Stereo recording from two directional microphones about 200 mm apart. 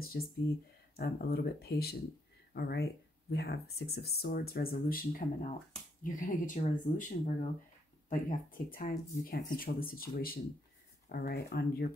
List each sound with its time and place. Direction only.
0.2 s speech: 55° left (ahead or behind)
2.5 s speech: 65° left (ahead or behind); by 7.1 s 40° left (ahead or behind)
8.1 s speech: 45° left (ahead or behind)